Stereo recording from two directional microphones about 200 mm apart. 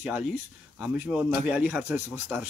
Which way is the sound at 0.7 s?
5° right (ahead or behind).